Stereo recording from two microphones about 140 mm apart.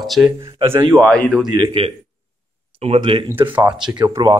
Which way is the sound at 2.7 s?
45° right (ahead or behind).